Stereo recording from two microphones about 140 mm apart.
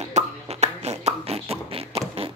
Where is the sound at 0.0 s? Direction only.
50° right (ahead or behind).